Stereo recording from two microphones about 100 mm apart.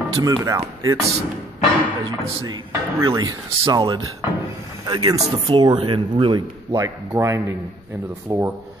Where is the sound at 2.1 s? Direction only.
45° right (ahead or behind).